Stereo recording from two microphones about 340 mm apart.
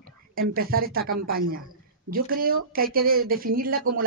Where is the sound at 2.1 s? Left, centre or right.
Right.